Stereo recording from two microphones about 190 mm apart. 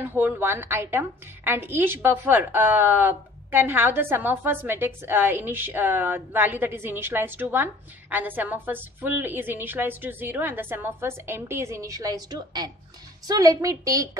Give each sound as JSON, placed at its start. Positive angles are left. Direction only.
{"t": 0.0, "sound": "a woman's voice", "side_deg": -10}